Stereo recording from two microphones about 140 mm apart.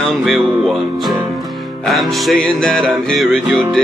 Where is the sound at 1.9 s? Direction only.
Centre (ahead or behind).